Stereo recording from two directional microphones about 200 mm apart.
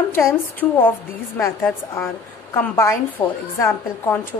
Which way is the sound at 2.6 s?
15° left (ahead or behind).